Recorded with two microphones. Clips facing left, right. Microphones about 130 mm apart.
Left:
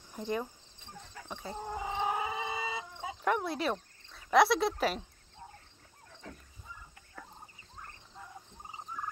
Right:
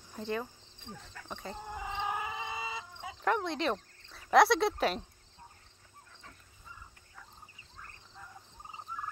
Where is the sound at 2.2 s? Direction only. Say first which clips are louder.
Left 3 dB; 25° left (ahead or behind).